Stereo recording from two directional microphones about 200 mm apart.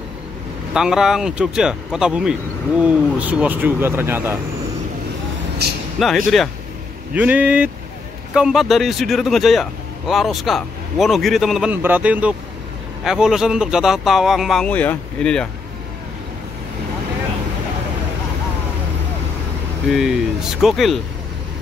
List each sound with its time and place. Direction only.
0.7 s speech: 5° right (ahead or behind)
5.6 s vehicle: 55° right (ahead or behind)
5.9 s speech: centre (ahead or behind)
19.9 s speech: centre (ahead or behind)